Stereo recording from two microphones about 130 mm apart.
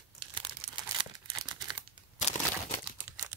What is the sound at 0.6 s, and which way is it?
Crumpling, 50° right (ahead or behind).